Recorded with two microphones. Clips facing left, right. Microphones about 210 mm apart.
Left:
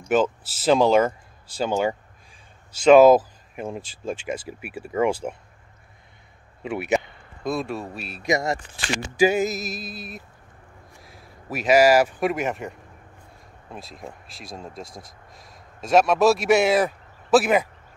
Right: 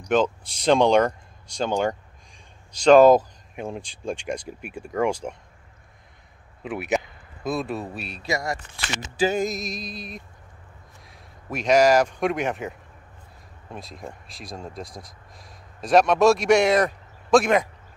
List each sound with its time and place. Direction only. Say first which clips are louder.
0.1 s speech: even; 5° left (ahead or behind)
6.6 s speech: left 2 dB; centre (ahead or behind)
8.2 s speech: left 5 dB; 20° left (ahead or behind)
9.2 s speech: left 3 dB; 5° left (ahead or behind)
13.7 s speech: right 1 dB; centre (ahead or behind)